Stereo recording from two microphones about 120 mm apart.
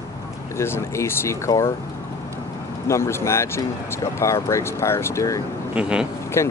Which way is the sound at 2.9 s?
20° left (ahead or behind).